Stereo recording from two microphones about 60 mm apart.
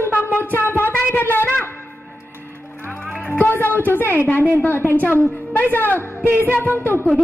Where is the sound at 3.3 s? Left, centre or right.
Left.